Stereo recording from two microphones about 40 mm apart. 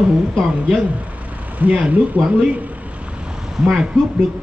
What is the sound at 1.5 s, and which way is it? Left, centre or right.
Speech, right.